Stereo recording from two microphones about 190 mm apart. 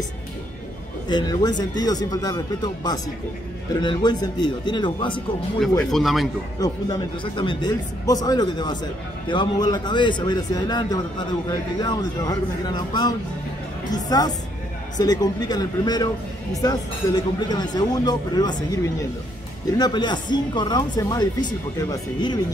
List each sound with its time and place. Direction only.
1.0 s speech: 20° left (ahead or behind)
5.9 s speech: centre (ahead or behind)
6.6 s a woman's voice: 25° left (ahead or behind)